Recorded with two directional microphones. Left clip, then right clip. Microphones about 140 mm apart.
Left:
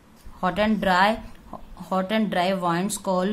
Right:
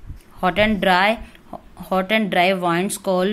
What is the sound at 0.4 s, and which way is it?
Speech, 25° right (ahead or behind).